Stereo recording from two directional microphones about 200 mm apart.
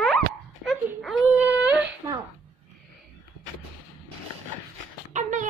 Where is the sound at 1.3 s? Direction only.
10° right (ahead or behind).